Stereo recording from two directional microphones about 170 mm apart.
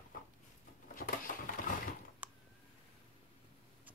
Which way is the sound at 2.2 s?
10° right (ahead or behind).